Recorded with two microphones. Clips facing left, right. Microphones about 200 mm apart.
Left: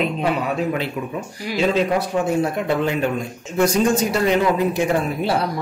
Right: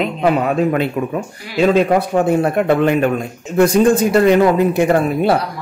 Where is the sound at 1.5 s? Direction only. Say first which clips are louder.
Right 6 dB; 60° right (ahead or behind).